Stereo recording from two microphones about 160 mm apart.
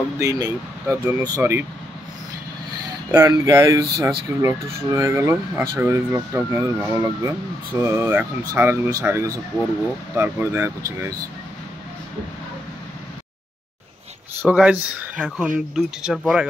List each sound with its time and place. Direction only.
0.2 s speech: 20° right (ahead or behind)
3.1 s speech: 15° right (ahead or behind)
14.4 s speech: 10° right (ahead or behind)